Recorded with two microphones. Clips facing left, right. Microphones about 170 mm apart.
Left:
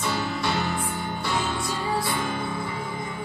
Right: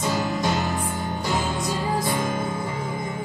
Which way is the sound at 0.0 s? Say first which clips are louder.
Right 3 dB; 45° right (ahead or behind).